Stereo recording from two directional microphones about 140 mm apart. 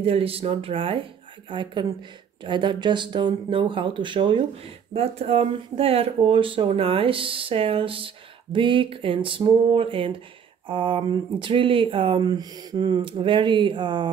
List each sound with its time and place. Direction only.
0.0 s speech: 45° right (ahead or behind)
4.9 s speech: 45° right (ahead or behind)